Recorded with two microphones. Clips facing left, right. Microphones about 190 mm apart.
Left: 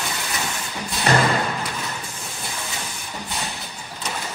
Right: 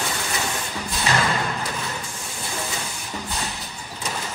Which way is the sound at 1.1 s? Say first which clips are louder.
Left 5 dB; 60° left (ahead or behind).